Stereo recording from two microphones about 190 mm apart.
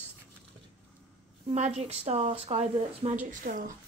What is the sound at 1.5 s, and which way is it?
A woman's voice, 35° right (ahead or behind).